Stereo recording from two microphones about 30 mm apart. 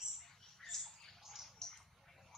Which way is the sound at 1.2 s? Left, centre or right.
Centre.